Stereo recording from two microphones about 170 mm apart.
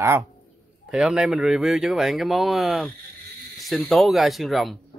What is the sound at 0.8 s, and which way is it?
A man's voice, 5° right (ahead or behind).